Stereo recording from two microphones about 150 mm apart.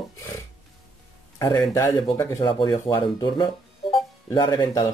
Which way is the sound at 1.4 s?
20° left (ahead or behind).